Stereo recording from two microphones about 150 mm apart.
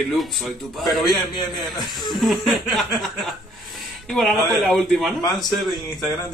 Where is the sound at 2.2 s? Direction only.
Centre (ahead or behind).